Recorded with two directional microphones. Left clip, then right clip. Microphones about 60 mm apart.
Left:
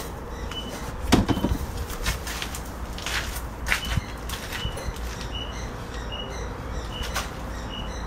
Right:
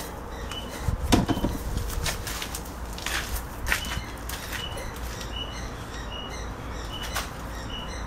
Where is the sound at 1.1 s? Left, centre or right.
Centre.